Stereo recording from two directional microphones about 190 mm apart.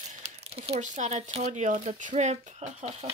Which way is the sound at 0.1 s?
35° right (ahead or behind).